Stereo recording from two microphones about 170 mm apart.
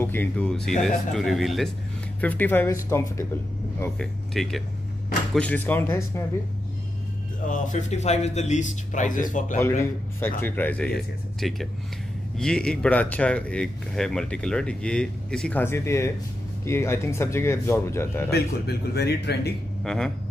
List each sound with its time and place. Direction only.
0.0 s speech: 10° left (ahead or behind)
2.2 s speech: 10° left (ahead or behind)
4.0 s speech: 5° left (ahead or behind)
7.4 s speech: 50° left (ahead or behind)
9.6 s speech: 15° left (ahead or behind)
18.3 s speech: 70° left (ahead or behind)
19.8 s speech: centre (ahead or behind)